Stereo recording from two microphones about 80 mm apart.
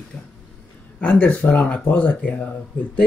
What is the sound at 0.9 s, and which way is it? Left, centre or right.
Speech, centre.